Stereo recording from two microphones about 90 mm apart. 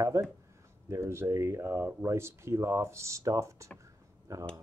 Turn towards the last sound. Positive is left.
turn(degrees=-35)  # may be behind; listen again after turning